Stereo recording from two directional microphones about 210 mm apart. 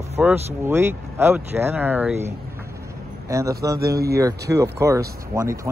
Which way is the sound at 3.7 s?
50° right (ahead or behind).